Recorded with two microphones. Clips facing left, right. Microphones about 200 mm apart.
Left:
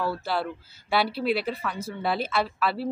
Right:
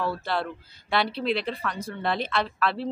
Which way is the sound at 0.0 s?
5° left (ahead or behind).